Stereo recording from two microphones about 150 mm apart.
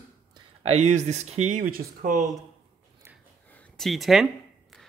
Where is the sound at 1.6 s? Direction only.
75° right (ahead or behind).